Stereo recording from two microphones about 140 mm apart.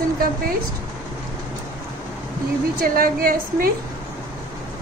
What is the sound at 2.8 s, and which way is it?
Speech, 90° right.